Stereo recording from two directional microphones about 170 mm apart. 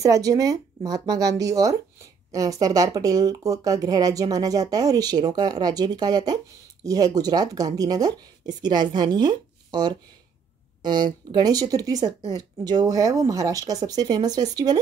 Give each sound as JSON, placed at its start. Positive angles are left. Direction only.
{"t": 0.0, "sound": "speech", "side_deg": -20}